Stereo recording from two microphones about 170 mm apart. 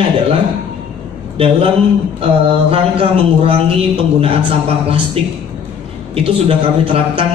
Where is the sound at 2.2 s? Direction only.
35° right (ahead or behind).